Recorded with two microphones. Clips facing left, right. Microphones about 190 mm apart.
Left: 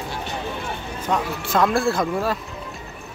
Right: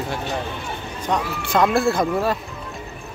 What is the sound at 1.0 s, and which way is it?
Speech, 5° left (ahead or behind).